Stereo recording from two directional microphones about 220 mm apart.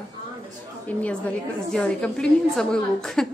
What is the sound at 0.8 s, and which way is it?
A woman's voice, 5° left (ahead or behind).